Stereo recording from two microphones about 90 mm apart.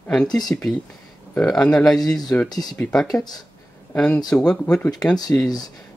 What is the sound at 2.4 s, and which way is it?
Speech, 45° left (ahead or behind).